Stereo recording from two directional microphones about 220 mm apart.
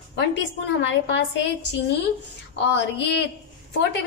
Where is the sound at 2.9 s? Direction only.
50° left (ahead or behind).